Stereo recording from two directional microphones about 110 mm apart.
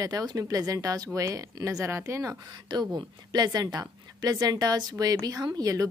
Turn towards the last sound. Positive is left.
turn(degrees=-35)  # may be behind; listen again after turning